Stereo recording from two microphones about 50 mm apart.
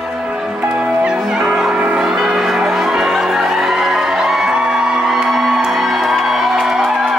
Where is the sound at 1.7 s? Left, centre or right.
Right.